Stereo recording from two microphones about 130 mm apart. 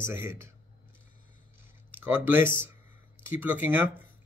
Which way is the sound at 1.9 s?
15° right (ahead or behind).